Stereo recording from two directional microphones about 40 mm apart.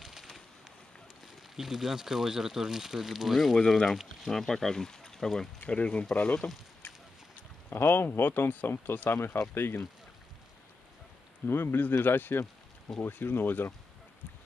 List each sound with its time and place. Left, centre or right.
0.0 s a sound: centre
1.6 s speech: centre
3.5 s speech: centre
5.7 s speech: left
7.9 s speech: left
8.6 s speech: left
9.1 s speech: left
11.4 s speech: left